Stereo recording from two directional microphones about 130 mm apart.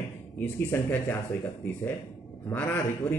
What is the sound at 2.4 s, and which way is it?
Speech, 15° left (ahead or behind).